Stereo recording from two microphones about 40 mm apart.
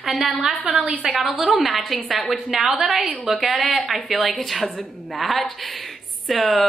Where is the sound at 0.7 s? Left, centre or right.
Right.